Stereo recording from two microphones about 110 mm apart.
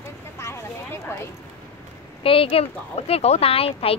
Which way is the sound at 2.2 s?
55° left (ahead or behind).